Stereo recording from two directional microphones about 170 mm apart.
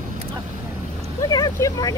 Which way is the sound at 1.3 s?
20° left (ahead or behind).